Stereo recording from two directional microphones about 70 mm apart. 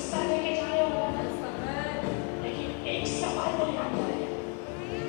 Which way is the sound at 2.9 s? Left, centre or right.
Centre.